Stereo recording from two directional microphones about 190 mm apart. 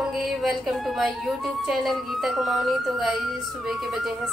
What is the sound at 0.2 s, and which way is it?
Music, centre (ahead or behind).